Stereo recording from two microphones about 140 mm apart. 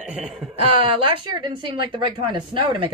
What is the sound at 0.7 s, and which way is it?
A woman's voice, 40° right (ahead or behind).